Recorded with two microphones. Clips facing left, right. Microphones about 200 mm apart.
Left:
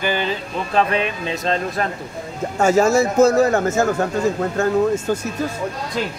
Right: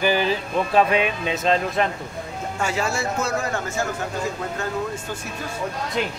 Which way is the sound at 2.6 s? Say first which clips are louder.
Left 11 dB; 45° left (ahead or behind).